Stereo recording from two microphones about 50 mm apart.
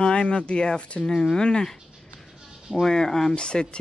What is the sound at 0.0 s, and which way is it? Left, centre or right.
Speech, centre.